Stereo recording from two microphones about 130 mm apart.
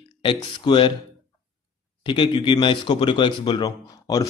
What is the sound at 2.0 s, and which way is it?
Speech, 40° left (ahead or behind).